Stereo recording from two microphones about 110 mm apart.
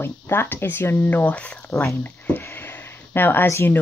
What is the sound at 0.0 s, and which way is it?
Speech, 20° left (ahead or behind).